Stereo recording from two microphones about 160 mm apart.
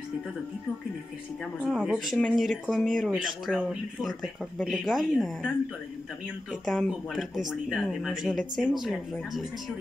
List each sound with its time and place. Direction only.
1.6 s speech: 5° right (ahead or behind)
6.5 s speech: centre (ahead or behind)